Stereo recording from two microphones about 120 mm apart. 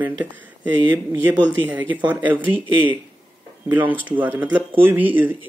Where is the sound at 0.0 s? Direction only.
15° right (ahead or behind).